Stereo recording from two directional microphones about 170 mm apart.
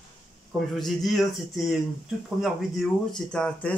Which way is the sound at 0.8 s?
Centre (ahead or behind).